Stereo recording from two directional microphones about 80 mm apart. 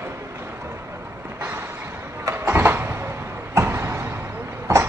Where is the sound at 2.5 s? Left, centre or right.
Right.